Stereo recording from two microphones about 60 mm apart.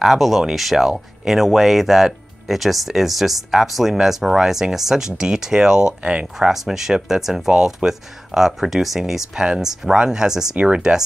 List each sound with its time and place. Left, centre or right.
0.0 s speech: centre
6.5 s speech: centre